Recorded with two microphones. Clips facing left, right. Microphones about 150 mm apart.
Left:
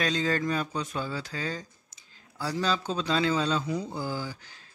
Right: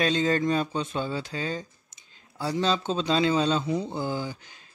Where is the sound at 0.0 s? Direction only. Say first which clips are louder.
Right 4 dB; 25° right (ahead or behind).